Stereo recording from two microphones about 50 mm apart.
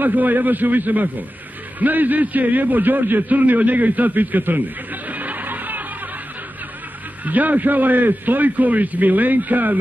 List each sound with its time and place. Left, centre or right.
0.0 s a man's voice: right
7.2 s a man's voice: right